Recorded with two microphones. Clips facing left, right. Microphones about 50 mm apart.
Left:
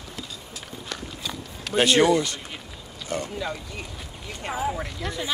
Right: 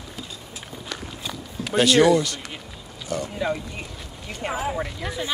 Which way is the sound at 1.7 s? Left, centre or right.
Left.